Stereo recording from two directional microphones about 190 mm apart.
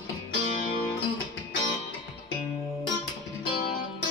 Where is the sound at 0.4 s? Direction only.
40° left (ahead or behind).